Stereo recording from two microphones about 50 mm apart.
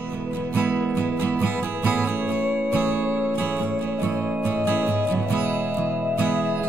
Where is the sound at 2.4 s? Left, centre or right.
Right.